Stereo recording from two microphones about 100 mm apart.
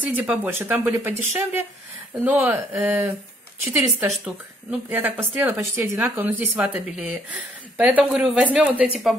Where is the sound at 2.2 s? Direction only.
20° right (ahead or behind).